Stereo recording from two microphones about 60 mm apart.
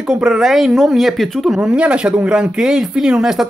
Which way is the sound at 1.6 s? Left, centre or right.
Centre.